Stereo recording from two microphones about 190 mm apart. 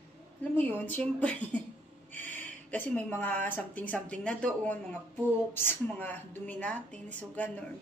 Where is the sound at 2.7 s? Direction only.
5° left (ahead or behind).